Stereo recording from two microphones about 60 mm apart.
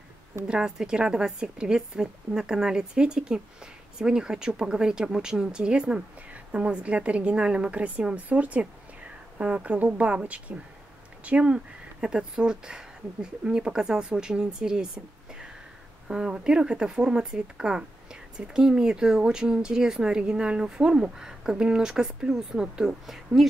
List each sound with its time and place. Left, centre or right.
0.5 s a woman's voice: centre
16.1 s speech: centre